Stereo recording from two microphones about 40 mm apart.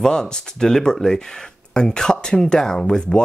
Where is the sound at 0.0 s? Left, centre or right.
Centre.